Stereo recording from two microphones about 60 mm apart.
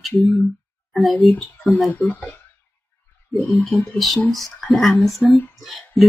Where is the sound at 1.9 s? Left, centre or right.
Left.